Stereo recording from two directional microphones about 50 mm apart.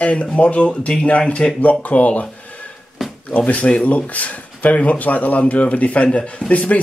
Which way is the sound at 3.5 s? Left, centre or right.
Left.